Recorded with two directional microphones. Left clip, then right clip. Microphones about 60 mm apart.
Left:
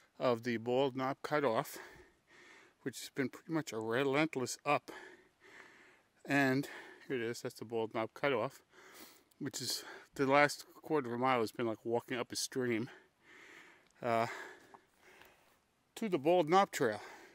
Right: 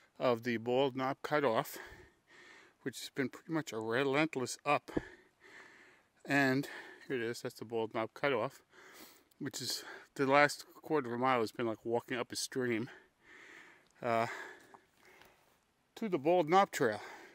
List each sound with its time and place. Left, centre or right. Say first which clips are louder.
0.2 s speech: right 1 dB; centre
15.0 s a sound: left 1 dB; left
15.9 s speech: even; centre